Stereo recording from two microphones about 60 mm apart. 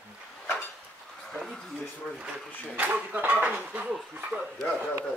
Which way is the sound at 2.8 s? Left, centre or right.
Right.